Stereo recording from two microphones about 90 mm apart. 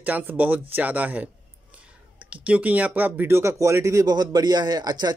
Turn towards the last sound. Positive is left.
turn(degrees=-50)  # may be behind; listen again after turning